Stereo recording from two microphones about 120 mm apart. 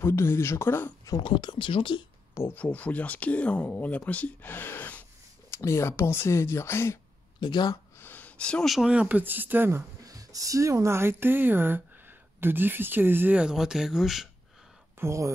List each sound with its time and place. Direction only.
0.0 s speech: 20° left (ahead or behind)
1.2 s speech: 40° left (ahead or behind)
2.3 s speech: 15° left (ahead or behind)
7.3 s speech: 40° left (ahead or behind)
8.0 s speech: 15° left (ahead or behind); by 14.3 s centre (ahead or behind)
15.0 s speech: 25° right (ahead or behind)